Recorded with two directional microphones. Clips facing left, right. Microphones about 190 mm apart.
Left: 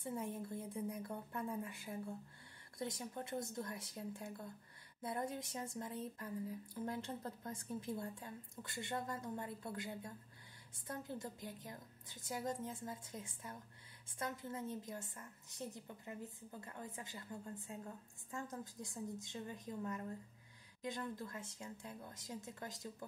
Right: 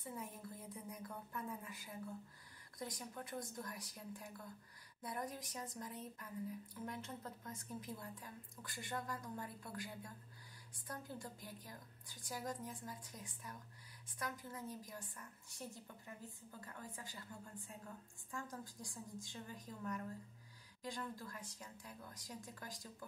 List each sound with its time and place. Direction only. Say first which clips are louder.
0.0 s speech: left 6 dB; 30° left (ahead or behind)